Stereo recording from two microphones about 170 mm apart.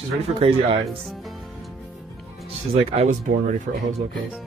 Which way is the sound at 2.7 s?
35° right (ahead or behind).